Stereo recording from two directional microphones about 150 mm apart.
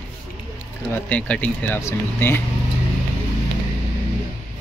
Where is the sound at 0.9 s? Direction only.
10° left (ahead or behind).